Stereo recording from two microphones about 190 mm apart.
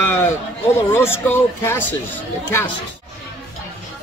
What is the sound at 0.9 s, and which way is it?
Speech, 10° left (ahead or behind).